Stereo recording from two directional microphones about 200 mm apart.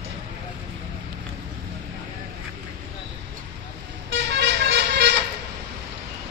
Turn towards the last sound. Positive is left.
turn(degrees=-60)  # may be behind; listen again after turning